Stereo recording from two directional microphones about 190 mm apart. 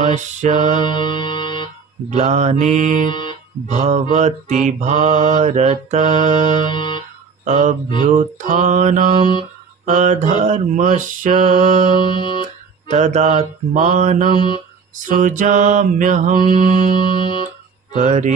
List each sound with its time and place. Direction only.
0.0 s mantra: 40° right (ahead or behind)
0.7 s music: 25° left (ahead or behind)
2.0 s mantra: 35° right (ahead or behind)
3.1 s guitar: 25° left (ahead or behind)
3.6 s mantra: 40° right (ahead or behind)
6.7 s music: 25° left (ahead or behind)
7.4 s mantra: 40° right (ahead or behind)
12.0 s music: 25° left (ahead or behind)
12.8 s mantra: 40° right (ahead or behind)
16.6 s music: 25° left (ahead or behind)
17.9 s mantra: 40° right (ahead or behind)